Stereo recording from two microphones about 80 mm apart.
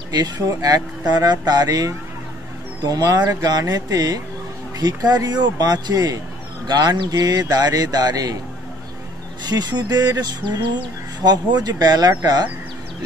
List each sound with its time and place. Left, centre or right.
0.1 s speech: right
9.5 s speech: right
11.2 s speech: right